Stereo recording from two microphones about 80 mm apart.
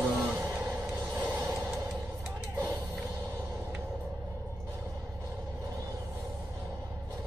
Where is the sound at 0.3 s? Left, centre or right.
Right.